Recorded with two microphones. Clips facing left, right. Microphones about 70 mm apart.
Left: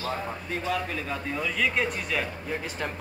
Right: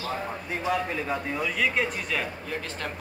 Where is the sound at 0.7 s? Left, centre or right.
Centre.